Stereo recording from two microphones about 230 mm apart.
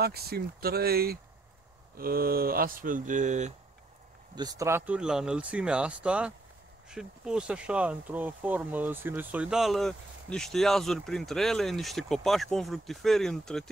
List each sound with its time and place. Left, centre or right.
0.0 s speech: right
4.4 s speech: centre